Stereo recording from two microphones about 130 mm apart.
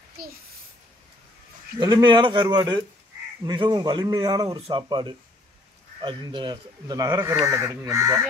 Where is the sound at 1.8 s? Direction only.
30° right (ahead or behind).